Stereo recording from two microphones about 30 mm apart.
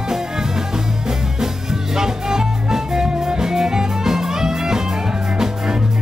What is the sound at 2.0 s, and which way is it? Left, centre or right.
Music, centre.